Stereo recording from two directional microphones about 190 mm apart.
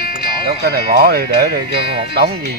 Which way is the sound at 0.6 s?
55° right (ahead or behind).